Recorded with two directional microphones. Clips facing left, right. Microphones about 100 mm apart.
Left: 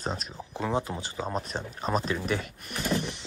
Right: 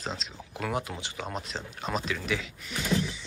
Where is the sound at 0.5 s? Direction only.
30° left (ahead or behind).